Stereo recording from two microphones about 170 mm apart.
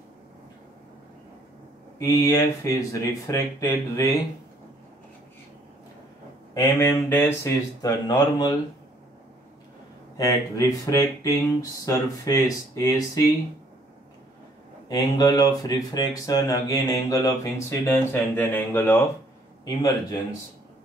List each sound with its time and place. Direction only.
2.0 s speech: 15° left (ahead or behind)
6.5 s speech: 15° left (ahead or behind)
10.1 s speech: 20° left (ahead or behind)
14.9 s speech: 20° left (ahead or behind)